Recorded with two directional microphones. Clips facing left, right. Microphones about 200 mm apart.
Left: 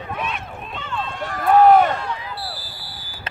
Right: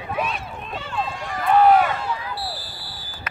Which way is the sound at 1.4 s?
45° left (ahead or behind).